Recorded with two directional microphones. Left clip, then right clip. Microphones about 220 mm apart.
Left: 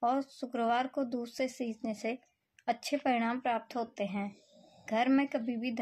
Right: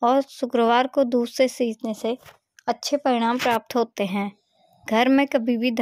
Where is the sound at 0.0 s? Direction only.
40° right (ahead or behind).